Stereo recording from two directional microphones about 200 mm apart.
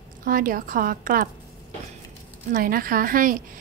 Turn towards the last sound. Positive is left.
turn(degrees=-45)  # may be behind; listen again after turning